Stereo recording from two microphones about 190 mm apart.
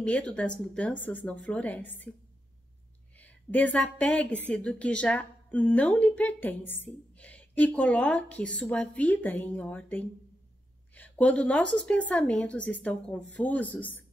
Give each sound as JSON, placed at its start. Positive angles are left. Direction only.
{"t": 0.0, "sound": "a woman's voice", "side_deg": 5}
{"t": 3.2, "sound": "a woman's voice", "side_deg": 10}